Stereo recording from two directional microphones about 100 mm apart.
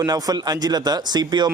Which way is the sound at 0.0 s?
40° right (ahead or behind).